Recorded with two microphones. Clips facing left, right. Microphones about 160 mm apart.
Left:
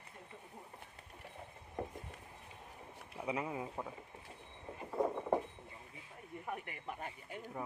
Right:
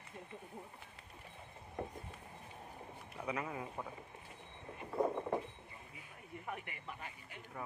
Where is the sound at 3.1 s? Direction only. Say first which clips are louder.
Left 2 dB; 20° left (ahead or behind).